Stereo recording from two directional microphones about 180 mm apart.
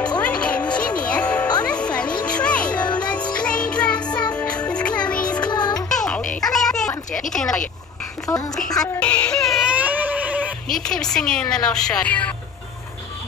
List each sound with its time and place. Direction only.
0.2 s music: 5° left (ahead or behind)
2.8 s music: 25° left (ahead or behind)
3.3 s music: 5° left (ahead or behind)
5.5 s music: 25° left (ahead or behind)
5.8 s music: 5° left (ahead or behind)
6.4 s a sound: centre (ahead or behind)
9.0 s baby cry: 5° left (ahead or behind)
10.7 s a woman's voice: 5° left (ahead or behind)